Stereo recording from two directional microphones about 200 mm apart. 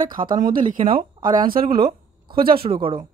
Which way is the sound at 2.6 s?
25° right (ahead or behind).